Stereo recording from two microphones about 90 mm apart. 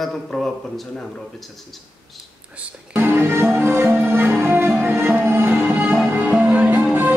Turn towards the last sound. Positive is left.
turn(degrees=-20)  # may be behind; listen again after turning